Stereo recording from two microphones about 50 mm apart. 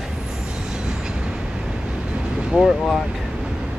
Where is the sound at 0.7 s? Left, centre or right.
Centre.